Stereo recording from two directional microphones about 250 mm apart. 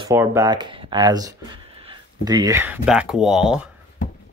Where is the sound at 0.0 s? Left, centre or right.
Centre.